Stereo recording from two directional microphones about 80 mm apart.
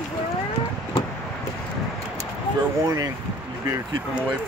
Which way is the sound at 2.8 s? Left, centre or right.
Right.